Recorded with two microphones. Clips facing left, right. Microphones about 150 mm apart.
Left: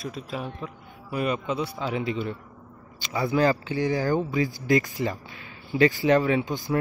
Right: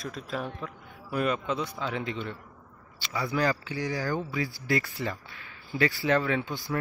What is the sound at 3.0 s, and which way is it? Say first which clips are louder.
A man's voice: left 5 dB; 25° left (ahead or behind).